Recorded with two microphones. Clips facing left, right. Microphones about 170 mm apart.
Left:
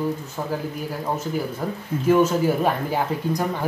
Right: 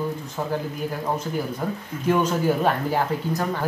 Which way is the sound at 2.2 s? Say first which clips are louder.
Left 2 dB; 10° left (ahead or behind).